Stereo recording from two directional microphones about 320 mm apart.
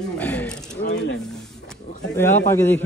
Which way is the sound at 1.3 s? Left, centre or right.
Centre.